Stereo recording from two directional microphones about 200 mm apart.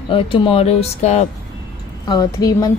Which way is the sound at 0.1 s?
25° left (ahead or behind).